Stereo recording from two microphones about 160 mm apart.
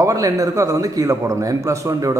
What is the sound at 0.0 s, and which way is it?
A man's voice, 20° right (ahead or behind).